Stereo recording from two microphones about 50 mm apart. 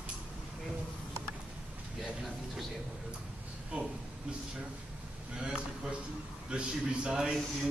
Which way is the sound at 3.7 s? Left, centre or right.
Right.